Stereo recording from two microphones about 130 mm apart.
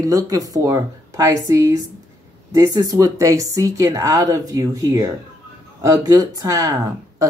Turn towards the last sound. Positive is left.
turn(degrees=-25)  # may be behind; listen again after turning